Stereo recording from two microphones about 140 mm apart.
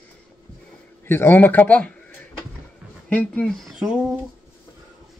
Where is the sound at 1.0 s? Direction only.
15° left (ahead or behind).